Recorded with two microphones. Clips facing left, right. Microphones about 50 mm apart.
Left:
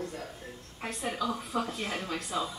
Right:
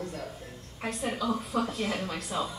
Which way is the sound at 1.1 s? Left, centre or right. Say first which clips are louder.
Right 1 dB; centre.